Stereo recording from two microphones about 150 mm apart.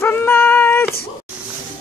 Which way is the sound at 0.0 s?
15° left (ahead or behind).